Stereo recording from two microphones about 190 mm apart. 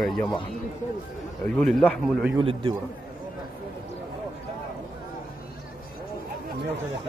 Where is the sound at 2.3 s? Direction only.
25° right (ahead or behind).